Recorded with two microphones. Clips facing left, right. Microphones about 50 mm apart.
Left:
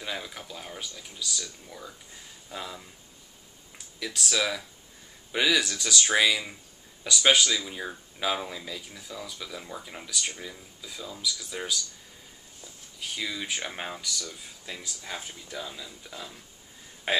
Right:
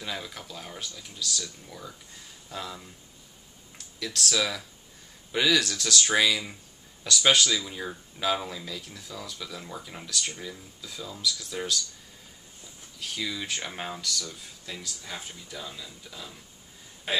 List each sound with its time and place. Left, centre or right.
0.0 s speech: centre
13.0 s speech: centre
14.8 s speech: left
16.1 s speech: left